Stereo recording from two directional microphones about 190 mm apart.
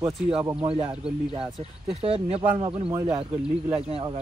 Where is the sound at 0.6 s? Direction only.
25° right (ahead or behind).